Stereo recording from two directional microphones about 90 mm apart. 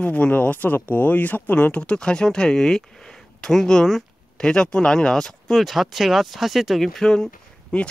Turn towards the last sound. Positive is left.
turn(degrees=10)  # may be behind; listen again after turning